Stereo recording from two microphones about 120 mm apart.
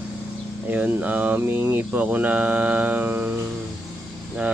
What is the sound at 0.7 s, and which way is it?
Speech, 15° right (ahead or behind).